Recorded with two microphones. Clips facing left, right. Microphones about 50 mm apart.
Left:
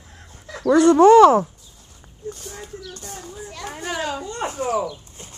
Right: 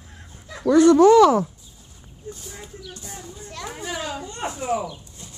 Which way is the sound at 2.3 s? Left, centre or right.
Left.